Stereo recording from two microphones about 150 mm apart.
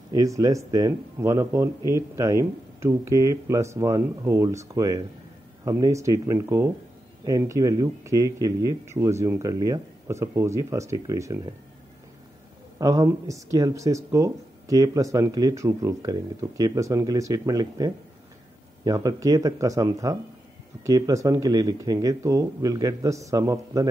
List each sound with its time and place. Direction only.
0.1 s speech: 20° right (ahead or behind)
12.7 s speech: 25° right (ahead or behind)